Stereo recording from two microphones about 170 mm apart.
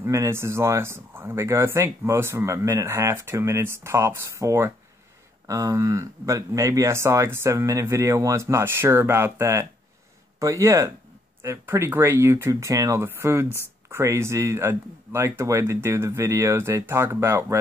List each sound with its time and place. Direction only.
0.0 s speech: 15° right (ahead or behind)